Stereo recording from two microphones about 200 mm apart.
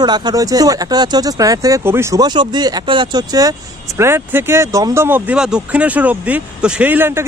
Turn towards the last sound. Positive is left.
turn(degrees=-10)  # may be behind; listen again after turning